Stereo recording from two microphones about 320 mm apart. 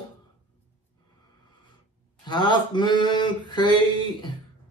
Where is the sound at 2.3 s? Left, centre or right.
Centre.